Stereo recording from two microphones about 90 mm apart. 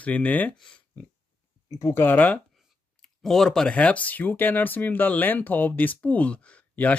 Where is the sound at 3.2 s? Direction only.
5° left (ahead or behind).